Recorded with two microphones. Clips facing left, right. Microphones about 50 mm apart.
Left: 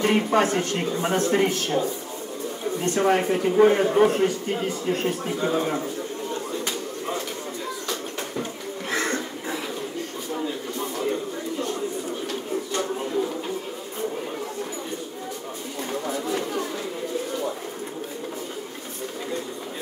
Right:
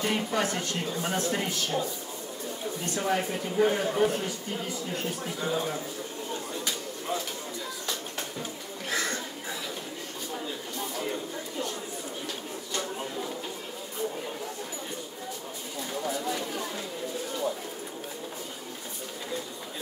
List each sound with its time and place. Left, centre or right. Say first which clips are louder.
0.0 s a man's voice: left 8 dB; left
8.9 s a sound: left 5 dB; left
15.8 s chatter: left 3 dB; left